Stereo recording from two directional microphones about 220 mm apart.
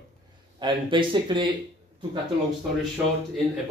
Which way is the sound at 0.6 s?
20° right (ahead or behind).